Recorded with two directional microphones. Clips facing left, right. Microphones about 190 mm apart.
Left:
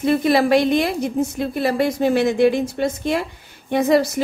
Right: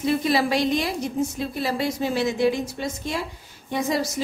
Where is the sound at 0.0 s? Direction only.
55° left (ahead or behind).